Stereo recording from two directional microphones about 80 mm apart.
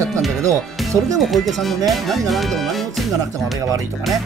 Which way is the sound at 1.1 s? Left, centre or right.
Centre.